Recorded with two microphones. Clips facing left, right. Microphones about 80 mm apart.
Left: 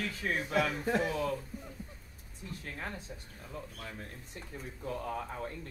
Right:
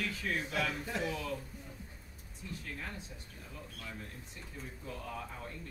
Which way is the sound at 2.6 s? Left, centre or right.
Left.